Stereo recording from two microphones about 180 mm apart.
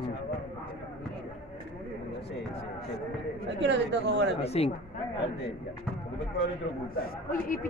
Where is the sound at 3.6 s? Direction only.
80° right.